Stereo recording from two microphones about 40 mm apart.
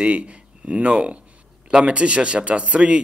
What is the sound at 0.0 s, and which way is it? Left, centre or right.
A man's voice, right.